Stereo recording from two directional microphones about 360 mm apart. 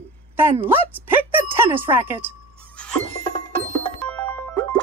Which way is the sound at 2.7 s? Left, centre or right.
Centre.